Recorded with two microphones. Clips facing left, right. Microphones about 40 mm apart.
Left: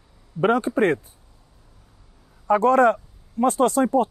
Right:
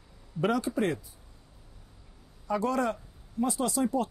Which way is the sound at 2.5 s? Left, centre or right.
Left.